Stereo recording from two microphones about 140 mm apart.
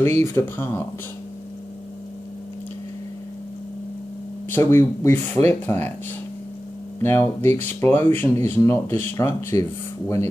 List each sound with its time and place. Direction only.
0.0 s speech: 20° left (ahead or behind)
4.5 s speech: 15° left (ahead or behind)
7.0 s speech: 15° left (ahead or behind)